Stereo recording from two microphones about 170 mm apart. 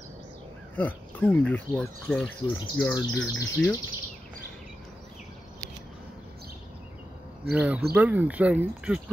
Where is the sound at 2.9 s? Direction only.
20° left (ahead or behind).